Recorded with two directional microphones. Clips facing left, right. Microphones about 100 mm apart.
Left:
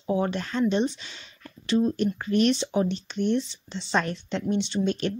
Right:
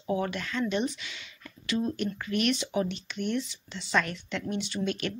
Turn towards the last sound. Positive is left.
turn(degrees=30)  # may be behind; listen again after turning